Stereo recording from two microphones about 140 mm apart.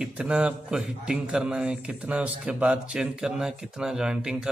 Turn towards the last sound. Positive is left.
turn(degrees=-5)  # may be behind; listen again after turning